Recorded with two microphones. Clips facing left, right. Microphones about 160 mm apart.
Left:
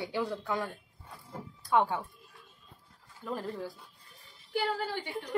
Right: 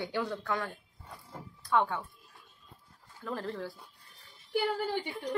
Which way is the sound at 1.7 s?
10° left (ahead or behind).